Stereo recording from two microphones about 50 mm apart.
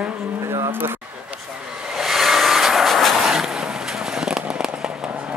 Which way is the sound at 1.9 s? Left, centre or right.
Centre.